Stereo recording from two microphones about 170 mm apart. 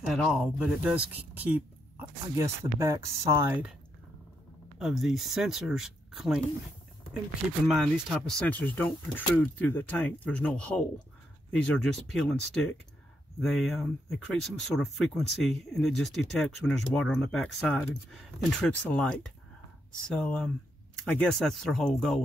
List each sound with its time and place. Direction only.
0.0 s speech: centre (ahead or behind)
4.7 s speech: centre (ahead or behind)
7.6 s speech: centre (ahead or behind)